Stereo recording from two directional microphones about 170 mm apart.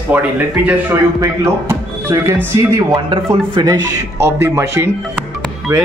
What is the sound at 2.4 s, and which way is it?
Speech, 20° right (ahead or behind).